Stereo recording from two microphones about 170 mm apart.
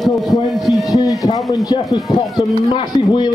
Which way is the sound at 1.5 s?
20° left (ahead or behind).